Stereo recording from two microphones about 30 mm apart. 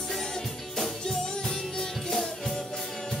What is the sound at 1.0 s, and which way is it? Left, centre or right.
Music, centre.